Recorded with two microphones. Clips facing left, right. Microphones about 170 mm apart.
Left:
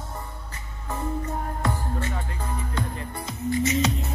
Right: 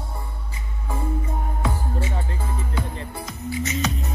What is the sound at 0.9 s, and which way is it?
Music, 10° right (ahead or behind).